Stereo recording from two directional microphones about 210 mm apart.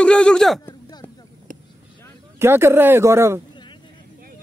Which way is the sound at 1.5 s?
40° right (ahead or behind).